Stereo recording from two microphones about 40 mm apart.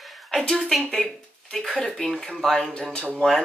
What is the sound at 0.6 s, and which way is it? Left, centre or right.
Speech, centre.